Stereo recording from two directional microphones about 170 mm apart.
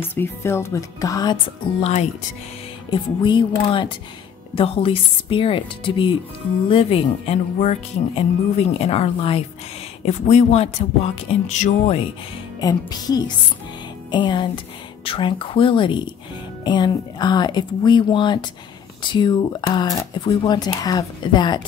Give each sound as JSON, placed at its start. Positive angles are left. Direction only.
{"t": 0.1, "sound": "speech", "side_deg": 15}
{"t": 1.8, "sound": "speech", "side_deg": 40}
{"t": 2.9, "sound": "speech", "side_deg": 30}
{"t": 12.5, "sound": "speech", "side_deg": 20}